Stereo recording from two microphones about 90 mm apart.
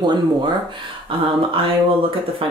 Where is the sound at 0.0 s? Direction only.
55° right (ahead or behind).